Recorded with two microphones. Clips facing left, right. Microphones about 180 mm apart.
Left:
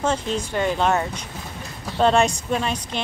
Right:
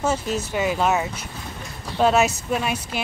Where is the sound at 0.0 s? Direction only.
5° right (ahead or behind).